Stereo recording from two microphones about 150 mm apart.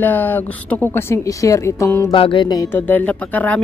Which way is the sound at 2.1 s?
35° left (ahead or behind).